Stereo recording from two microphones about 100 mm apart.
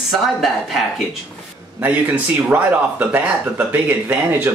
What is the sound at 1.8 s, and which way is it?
Speech, 20° right (ahead or behind).